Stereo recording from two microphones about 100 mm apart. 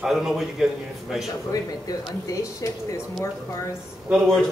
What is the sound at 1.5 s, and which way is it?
Speech, 40° left (ahead or behind).